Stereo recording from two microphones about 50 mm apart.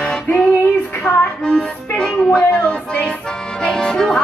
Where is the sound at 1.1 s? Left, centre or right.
Left.